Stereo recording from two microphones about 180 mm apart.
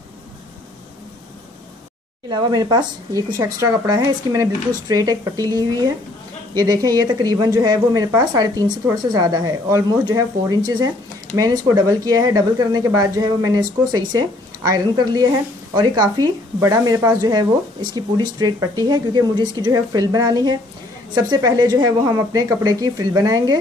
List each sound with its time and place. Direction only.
2.2 s speech: 20° right (ahead or behind)